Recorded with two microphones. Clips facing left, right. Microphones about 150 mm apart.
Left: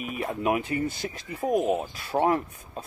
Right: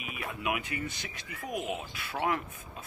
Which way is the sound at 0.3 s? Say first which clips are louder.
Left 8 dB; 40° left (ahead or behind).